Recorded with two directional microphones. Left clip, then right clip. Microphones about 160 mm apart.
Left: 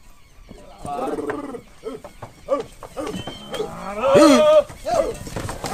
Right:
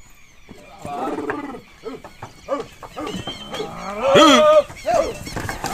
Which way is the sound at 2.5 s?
25° left (ahead or behind).